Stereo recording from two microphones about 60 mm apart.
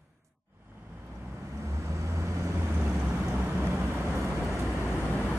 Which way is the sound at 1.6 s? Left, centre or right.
Right.